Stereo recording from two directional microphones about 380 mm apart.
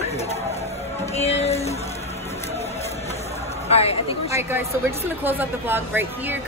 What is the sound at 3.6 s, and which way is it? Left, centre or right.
Speech, centre.